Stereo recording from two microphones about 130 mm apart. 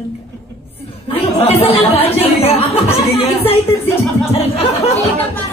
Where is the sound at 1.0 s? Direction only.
50° left (ahead or behind).